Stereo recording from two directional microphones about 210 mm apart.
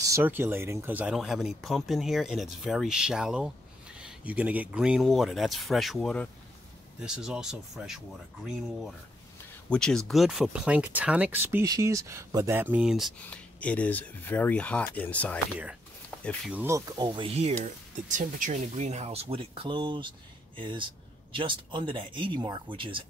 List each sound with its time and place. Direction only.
0.1 s speech: 10° right (ahead or behind)
9.7 s speech: 5° left (ahead or behind)
16.5 s speech: 15° right (ahead or behind)